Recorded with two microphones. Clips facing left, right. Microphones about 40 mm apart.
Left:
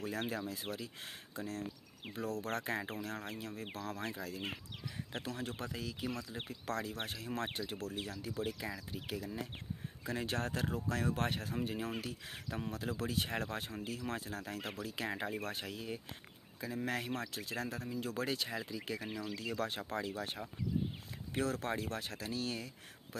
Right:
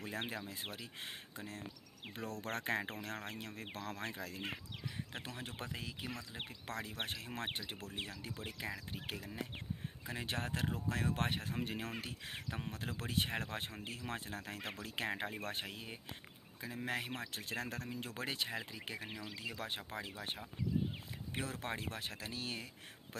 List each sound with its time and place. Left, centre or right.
0.0 s speech: right
2.4 s speech: right
5.2 s speech: right
8.9 s speech: right
9.2 s speech: right
11.6 s speech: right
12.0 s speech: right
12.4 s speech: right
16.6 s speech: centre
17.3 s speech: right
19.1 s speech: centre
21.3 s speech: centre